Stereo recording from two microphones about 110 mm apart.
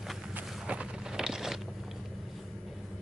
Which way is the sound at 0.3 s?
10° right (ahead or behind).